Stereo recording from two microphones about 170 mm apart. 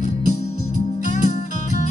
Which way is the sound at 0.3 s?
45° left (ahead or behind).